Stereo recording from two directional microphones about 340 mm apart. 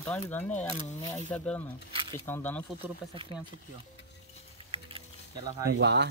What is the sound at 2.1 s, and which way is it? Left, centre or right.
Speech, centre.